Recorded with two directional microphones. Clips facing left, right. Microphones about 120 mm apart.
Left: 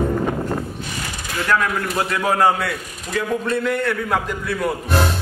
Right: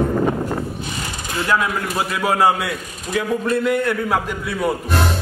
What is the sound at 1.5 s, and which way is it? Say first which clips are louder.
A man's voice: left 1 dB; 10° right (ahead or behind).